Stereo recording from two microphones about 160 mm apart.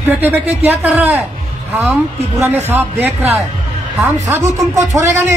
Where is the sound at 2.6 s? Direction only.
15° right (ahead or behind).